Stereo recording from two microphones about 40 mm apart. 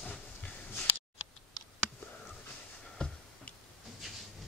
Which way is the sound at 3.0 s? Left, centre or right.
Left.